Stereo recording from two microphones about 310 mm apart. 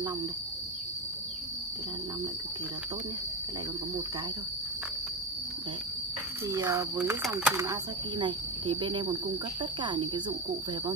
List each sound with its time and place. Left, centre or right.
6.5 s speech: centre